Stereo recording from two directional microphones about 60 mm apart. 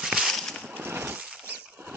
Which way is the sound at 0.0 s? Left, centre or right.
Centre.